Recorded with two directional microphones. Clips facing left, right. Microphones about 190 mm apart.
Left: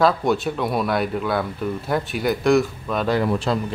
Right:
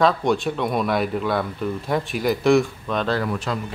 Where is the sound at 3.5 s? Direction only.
30° left (ahead or behind).